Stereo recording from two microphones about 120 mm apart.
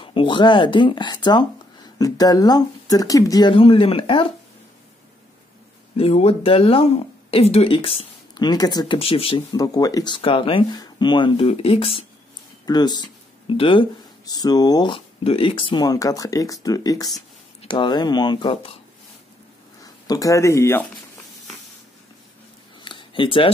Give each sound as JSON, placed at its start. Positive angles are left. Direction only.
{"t": 0.0, "sound": "speech", "side_deg": 45}
{"t": 3.5, "sound": "speech", "side_deg": 50}
{"t": 5.9, "sound": "speech", "side_deg": 55}
{"t": 8.4, "sound": "speech", "side_deg": 35}
{"t": 9.6, "sound": "speech", "side_deg": 30}
{"t": 10.1, "sound": "speech", "side_deg": 45}
{"t": 10.7, "sound": "speech", "side_deg": 35}
{"t": 11.4, "sound": "speech", "side_deg": 55}
{"t": 12.6, "sound": "speech", "side_deg": 35}
{"t": 14.2, "sound": "speech", "side_deg": 35}
{"t": 15.2, "sound": "speech", "side_deg": 50}
{"t": 17.6, "sound": "speech", "side_deg": 45}
{"t": 19.8, "sound": "speech", "side_deg": 30}
{"t": 22.8, "sound": "a sound", "side_deg": 45}